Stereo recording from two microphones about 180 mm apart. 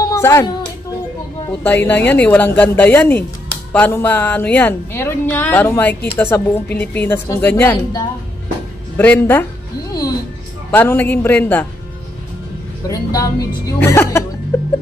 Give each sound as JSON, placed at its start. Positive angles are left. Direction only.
{"t": 0.0, "sound": "music", "side_deg": 15}
{"t": 1.6, "sound": "speech", "side_deg": 10}
{"t": 10.7, "sound": "speech", "side_deg": 10}
{"t": 12.8, "sound": "a woman's voice", "side_deg": 20}
{"t": 14.5, "sound": "music", "side_deg": 15}